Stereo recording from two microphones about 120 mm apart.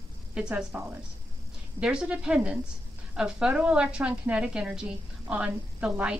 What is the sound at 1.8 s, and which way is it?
A woman's voice, 10° right (ahead or behind).